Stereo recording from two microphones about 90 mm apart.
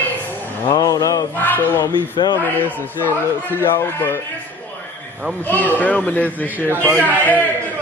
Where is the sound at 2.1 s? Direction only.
55° left (ahead or behind).